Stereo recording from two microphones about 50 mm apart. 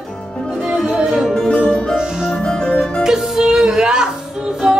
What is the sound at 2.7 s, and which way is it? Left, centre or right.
Music, centre.